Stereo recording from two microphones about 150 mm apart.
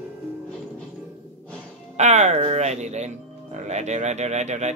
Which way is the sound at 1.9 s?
50° right (ahead or behind).